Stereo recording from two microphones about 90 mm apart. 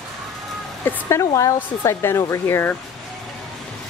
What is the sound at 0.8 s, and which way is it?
Speech, 25° left (ahead or behind).